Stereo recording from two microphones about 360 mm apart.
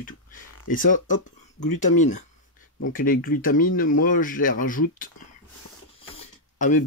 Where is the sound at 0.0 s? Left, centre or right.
Left.